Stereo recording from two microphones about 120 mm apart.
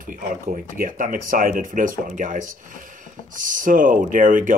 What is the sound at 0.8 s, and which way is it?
Speech, 90° right.